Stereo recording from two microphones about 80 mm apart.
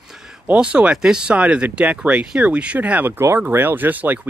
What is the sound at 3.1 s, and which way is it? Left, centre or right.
Speech, right.